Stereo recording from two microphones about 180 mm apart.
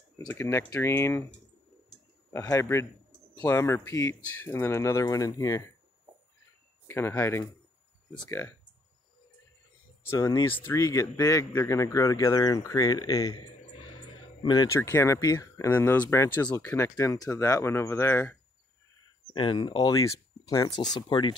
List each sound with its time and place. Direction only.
0.3 s speech: 15° left (ahead or behind)
2.3 s speech: 20° left (ahead or behind)
6.9 s speech: 15° left (ahead or behind)
10.0 s speech: 15° left (ahead or behind)
14.4 s speech: 25° left (ahead or behind)
19.3 s speech: 25° left (ahead or behind)